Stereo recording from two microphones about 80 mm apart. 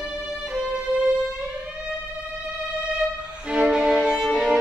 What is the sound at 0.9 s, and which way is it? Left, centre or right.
Music, right.